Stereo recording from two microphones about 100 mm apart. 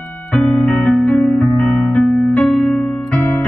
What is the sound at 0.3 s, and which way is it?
Electric piano, 10° left (ahead or behind).